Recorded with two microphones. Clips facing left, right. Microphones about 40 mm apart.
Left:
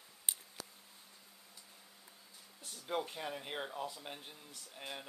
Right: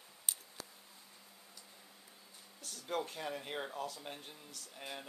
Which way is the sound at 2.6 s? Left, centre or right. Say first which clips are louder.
Even; left.